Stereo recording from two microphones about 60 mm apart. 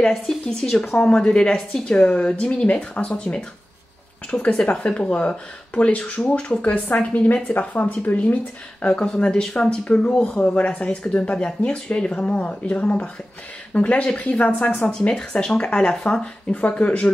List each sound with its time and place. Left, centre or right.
0.0 s a woman's voice: centre
0.9 s a woman's voice: centre
6.6 s speech: left
8.8 s a woman's voice: centre
14.9 s a woman's voice: centre